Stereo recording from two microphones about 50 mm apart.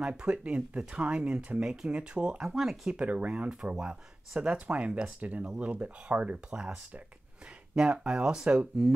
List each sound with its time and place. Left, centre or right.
0.0 s speech: centre
1.6 s speech: centre
1.9 s speech: right
2.4 s speech: centre
2.9 s speech: right